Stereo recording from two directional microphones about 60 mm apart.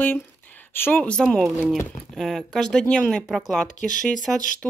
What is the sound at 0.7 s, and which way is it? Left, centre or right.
Speech, left.